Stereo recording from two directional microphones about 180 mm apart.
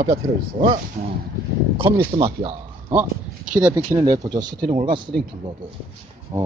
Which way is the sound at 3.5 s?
10° right (ahead or behind).